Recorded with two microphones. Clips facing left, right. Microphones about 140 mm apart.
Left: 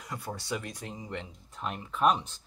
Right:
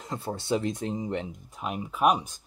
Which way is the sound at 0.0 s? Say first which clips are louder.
Right 5 dB; 25° right (ahead or behind).